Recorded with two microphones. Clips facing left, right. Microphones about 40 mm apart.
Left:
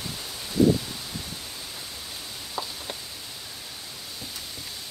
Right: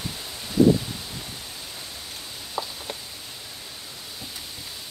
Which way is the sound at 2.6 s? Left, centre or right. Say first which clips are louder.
Right 2 dB; centre.